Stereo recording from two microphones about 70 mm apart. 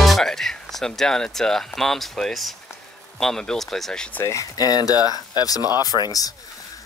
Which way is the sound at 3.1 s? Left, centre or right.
Centre.